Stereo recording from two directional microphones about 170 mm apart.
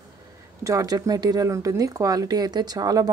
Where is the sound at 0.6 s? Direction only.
20° right (ahead or behind).